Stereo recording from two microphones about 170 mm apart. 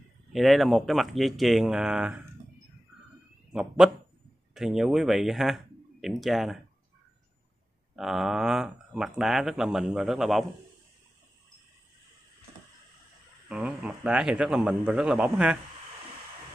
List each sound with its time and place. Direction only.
0.3 s speech: centre (ahead or behind)
3.5 s speech: 5° right (ahead or behind)
7.9 s speech: centre (ahead or behind)
13.5 s speech: 5° right (ahead or behind)